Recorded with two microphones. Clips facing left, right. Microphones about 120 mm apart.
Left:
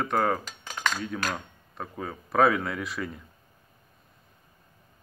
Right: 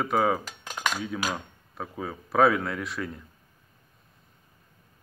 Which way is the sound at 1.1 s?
5° right (ahead or behind).